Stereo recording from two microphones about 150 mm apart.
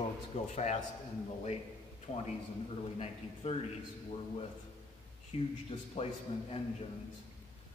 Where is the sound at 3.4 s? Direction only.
50° left (ahead or behind).